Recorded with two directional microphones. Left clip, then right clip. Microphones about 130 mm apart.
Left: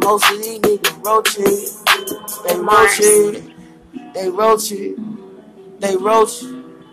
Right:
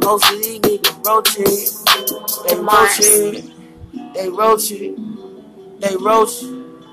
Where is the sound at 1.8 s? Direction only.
35° right (ahead or behind).